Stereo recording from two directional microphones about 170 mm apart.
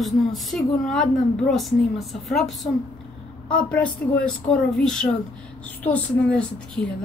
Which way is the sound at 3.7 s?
5° left (ahead or behind).